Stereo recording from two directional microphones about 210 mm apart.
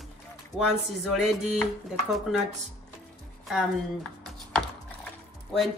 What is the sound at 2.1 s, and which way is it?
Speech, centre (ahead or behind).